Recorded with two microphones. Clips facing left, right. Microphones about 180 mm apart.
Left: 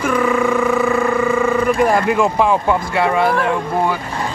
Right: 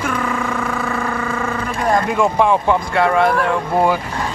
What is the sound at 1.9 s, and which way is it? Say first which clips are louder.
Speech: left 1 dB; 5° left (ahead or behind).